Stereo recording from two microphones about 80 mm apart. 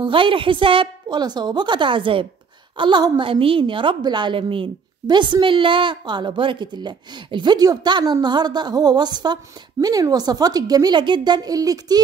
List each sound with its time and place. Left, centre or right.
0.0 s a woman's voice: right
2.8 s a woman's voice: right